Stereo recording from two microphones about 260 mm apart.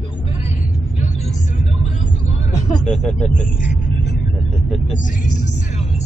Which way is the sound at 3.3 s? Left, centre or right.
Left.